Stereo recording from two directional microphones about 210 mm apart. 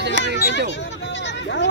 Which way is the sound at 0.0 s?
55° right (ahead or behind).